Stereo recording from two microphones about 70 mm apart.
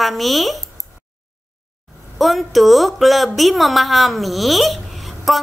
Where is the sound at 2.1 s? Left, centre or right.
Centre.